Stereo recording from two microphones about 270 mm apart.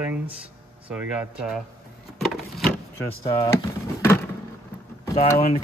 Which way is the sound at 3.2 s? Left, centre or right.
Centre.